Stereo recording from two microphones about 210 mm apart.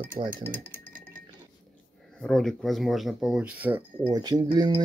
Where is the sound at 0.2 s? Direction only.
25° right (ahead or behind).